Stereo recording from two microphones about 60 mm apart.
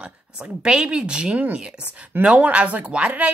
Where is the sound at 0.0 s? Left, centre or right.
Centre.